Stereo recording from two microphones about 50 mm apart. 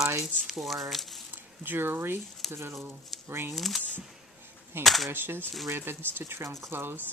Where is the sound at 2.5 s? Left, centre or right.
Right.